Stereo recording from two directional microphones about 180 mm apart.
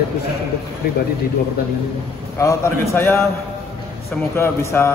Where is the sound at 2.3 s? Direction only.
15° left (ahead or behind).